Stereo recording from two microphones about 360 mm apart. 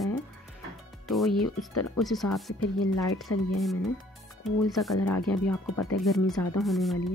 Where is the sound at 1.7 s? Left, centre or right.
Left.